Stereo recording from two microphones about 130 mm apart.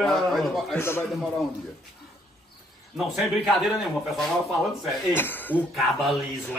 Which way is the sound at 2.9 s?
Centre (ahead or behind).